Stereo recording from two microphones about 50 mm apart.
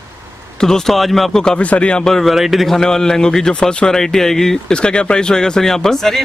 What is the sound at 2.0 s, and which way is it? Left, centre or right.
Speech, centre.